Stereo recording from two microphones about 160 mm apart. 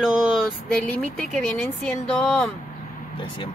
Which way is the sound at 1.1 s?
5° left (ahead or behind).